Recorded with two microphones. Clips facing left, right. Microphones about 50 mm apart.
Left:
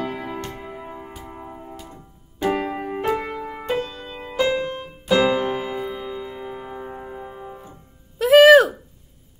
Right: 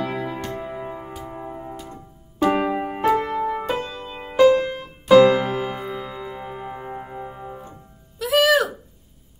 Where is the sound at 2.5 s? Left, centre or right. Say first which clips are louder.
Right 3 dB; centre.